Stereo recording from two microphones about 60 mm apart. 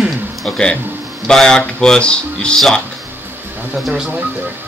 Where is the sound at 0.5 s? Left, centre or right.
Centre.